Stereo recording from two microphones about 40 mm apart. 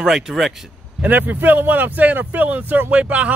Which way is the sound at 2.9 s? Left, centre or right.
Right.